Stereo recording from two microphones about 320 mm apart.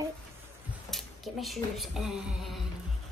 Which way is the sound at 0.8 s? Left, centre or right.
Centre.